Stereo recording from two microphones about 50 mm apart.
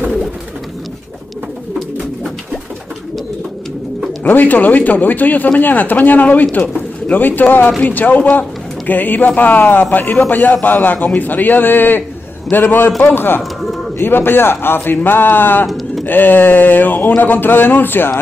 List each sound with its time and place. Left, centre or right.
1.8 s bird: centre
4.2 s speech: left